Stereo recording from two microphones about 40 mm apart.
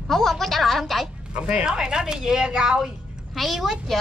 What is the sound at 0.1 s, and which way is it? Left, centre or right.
Speech, centre.